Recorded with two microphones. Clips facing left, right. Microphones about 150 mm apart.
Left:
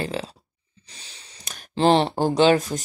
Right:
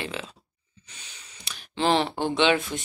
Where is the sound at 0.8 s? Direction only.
35° left (ahead or behind).